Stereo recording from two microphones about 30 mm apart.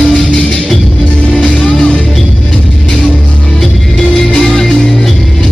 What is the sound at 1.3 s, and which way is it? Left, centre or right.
Music, left.